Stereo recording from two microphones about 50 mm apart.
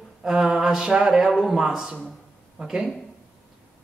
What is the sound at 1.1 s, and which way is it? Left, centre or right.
Speech, centre.